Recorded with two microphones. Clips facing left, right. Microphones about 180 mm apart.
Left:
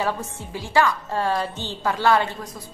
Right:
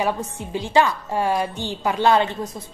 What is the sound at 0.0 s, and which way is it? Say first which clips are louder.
A woman's voice: right 2 dB; 15° right (ahead or behind).